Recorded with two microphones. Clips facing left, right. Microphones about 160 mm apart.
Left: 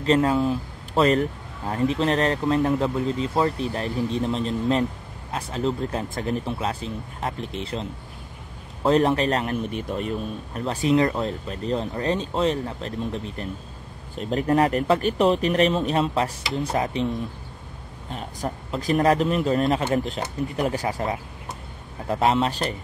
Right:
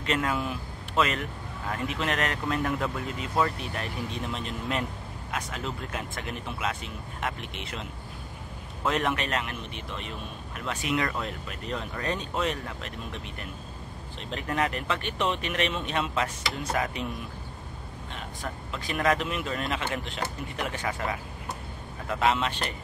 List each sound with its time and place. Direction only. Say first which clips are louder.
0.0 s a man's voice: left 9 dB; 30° left (ahead or behind)
18.1 s a man's voice: left 8 dB; 40° left (ahead or behind)
22.0 s a man's voice: left 5 dB; 35° left (ahead or behind)